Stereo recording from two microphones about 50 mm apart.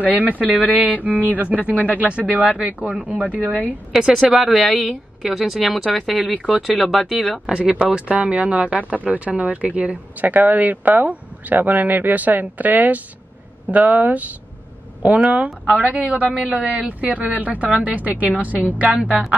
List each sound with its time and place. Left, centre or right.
0.0 s speech: right
3.9 s speech: centre
7.5 s speech: right